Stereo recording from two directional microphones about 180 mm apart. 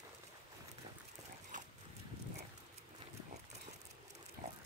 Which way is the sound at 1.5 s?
45° right (ahead or behind).